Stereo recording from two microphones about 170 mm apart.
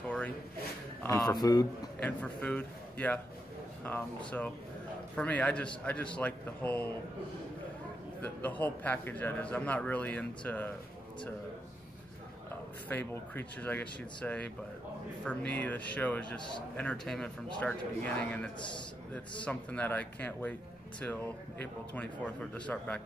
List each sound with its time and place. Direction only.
0.0 s a sound: 5° left (ahead or behind)
1.0 s speech: 20° left (ahead or behind)
2.0 s a man's voice: 5° left (ahead or behind)
5.1 s speech: 10° left (ahead or behind)
8.2 s speech: 10° left (ahead or behind)
12.4 s speech: 10° left (ahead or behind)